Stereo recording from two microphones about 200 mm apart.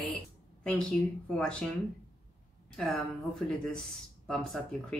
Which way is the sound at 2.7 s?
5° left (ahead or behind).